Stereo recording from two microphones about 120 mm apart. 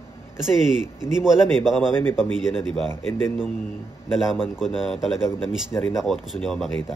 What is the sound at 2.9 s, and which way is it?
Speech, 20° left (ahead or behind).